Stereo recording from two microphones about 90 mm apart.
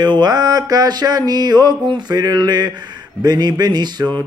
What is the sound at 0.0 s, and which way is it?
Mantra, 55° right (ahead or behind).